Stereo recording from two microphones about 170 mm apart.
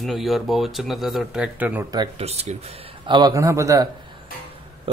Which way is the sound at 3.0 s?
25° right (ahead or behind).